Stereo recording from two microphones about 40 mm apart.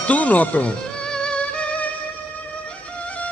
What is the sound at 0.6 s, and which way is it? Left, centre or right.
Music, left.